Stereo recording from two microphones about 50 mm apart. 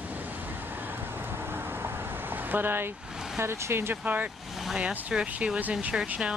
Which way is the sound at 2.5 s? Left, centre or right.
Right.